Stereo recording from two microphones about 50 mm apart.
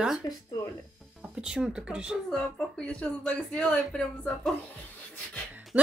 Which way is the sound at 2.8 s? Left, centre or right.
Left.